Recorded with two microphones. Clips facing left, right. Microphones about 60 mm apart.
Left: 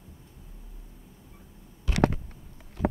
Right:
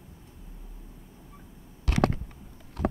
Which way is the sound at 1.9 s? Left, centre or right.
Right.